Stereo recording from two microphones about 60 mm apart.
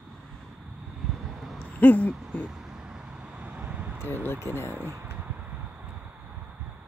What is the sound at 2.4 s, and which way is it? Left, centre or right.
Vehicle, right.